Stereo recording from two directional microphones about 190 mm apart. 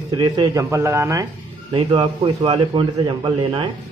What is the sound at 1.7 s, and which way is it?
Speech, 25° right (ahead or behind).